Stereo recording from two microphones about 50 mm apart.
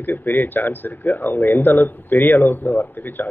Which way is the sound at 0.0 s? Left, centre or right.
Left.